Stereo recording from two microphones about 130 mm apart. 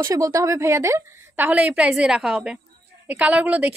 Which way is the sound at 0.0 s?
25° right (ahead or behind).